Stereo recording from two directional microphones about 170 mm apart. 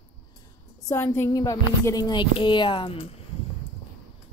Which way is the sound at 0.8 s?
15° left (ahead or behind).